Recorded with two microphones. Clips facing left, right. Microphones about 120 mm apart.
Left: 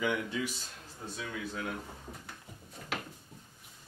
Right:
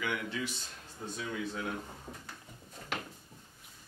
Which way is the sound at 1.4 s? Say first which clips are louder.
Even; centre (ahead or behind).